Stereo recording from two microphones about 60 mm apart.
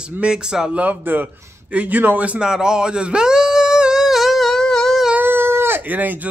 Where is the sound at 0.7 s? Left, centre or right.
Right; by 5.0 s centre.